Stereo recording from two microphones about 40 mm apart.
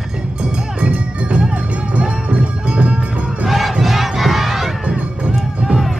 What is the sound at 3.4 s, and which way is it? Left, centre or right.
Battle cry, centre.